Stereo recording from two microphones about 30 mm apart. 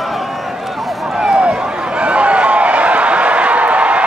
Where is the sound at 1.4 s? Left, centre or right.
Right.